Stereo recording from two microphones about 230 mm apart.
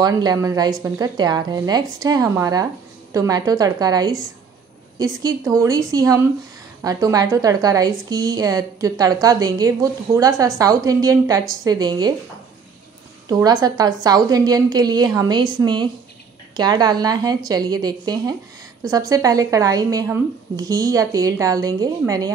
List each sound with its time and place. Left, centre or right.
0.0 s a woman's voice: centre
13.3 s a woman's voice: centre